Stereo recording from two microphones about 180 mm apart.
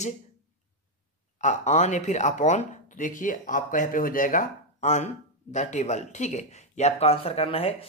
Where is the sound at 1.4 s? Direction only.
40° left (ahead or behind).